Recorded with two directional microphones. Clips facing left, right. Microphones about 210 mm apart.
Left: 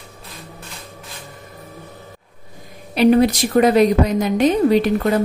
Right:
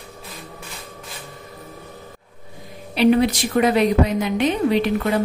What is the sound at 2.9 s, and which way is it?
A woman's voice, 45° left (ahead or behind).